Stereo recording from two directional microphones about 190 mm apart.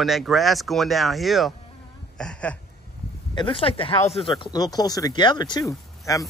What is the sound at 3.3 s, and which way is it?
Speech, 25° left (ahead or behind).